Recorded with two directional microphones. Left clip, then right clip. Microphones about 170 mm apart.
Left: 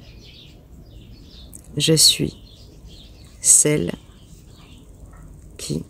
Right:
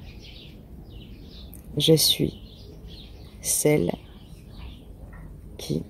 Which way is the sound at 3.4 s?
35° left (ahead or behind).